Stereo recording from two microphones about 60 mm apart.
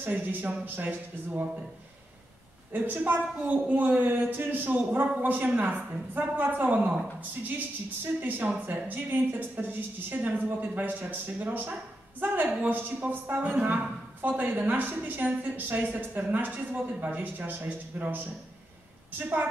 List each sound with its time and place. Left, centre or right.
0.0 s speech: right
2.7 s a man's voice: right